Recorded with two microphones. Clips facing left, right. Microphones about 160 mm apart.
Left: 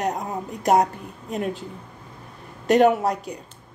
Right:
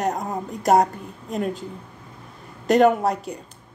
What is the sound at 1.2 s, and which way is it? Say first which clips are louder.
Speech: right 1 dB; 5° left (ahead or behind).